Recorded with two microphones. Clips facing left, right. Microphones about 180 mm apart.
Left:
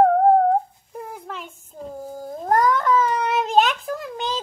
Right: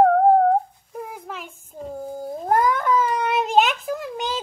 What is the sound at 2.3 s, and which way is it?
Cat, 5° right (ahead or behind).